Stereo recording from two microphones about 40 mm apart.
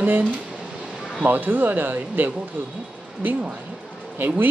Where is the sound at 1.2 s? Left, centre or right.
Right.